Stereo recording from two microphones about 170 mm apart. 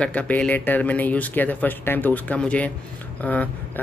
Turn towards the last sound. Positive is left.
turn(degrees=10)  # may be behind; listen again after turning